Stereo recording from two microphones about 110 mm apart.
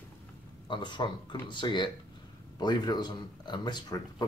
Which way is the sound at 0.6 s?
45° left (ahead or behind).